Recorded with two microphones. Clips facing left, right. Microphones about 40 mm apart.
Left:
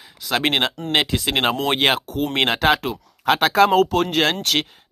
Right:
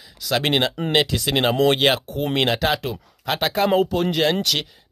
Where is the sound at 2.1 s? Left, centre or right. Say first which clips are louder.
Even; left.